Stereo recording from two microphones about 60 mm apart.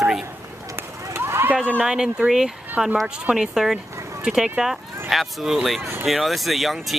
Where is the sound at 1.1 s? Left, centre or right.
Right.